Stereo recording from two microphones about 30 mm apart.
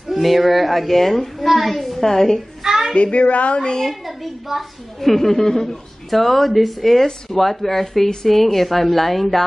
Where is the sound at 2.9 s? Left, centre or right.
Left.